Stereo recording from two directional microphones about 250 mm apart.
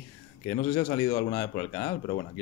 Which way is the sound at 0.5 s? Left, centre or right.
Left.